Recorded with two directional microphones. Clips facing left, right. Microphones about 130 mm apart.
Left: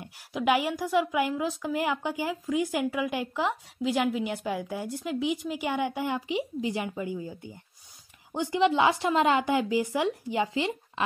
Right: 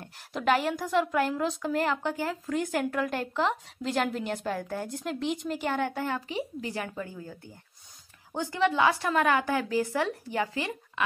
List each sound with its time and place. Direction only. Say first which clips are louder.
0.0 s a woman's voice: left 1 dB; 10° left (ahead or behind)